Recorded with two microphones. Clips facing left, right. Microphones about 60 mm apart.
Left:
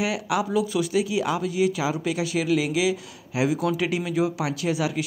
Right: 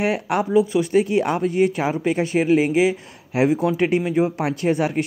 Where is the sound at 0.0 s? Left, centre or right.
Right.